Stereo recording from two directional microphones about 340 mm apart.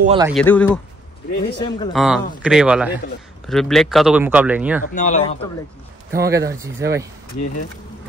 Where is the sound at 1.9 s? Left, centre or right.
Centre.